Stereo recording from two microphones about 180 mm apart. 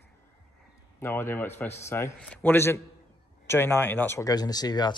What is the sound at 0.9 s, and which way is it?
A man's voice, 15° left (ahead or behind).